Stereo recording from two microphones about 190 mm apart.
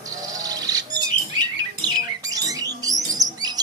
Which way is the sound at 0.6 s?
20° right (ahead or behind).